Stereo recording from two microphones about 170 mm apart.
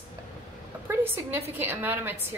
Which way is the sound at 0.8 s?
15° right (ahead or behind).